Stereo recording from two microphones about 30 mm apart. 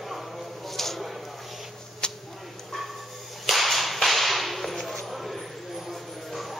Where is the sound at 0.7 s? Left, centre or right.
Centre.